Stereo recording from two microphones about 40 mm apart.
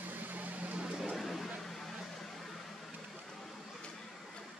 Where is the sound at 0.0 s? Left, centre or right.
Right.